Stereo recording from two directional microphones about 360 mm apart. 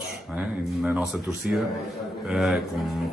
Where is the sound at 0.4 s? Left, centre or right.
Centre.